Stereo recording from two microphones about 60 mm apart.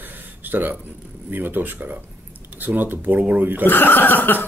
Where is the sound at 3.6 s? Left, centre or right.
Left.